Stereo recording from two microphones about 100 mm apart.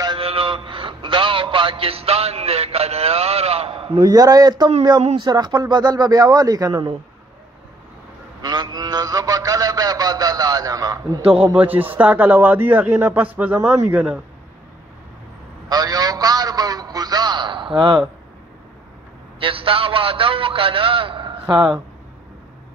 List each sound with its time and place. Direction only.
0.2 s speech: 70° right (ahead or behind); by 6.9 s 35° right (ahead or behind)
8.4 s mantra: 45° right (ahead or behind)
11.5 s speech: 20° right (ahead or behind)
15.7 s a sound: 40° right (ahead or behind); by 18.0 s 55° right (ahead or behind)
19.4 s a man's voice: 60° right (ahead or behind)